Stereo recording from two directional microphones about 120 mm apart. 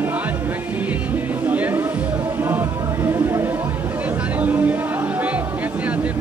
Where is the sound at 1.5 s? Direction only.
15° right (ahead or behind).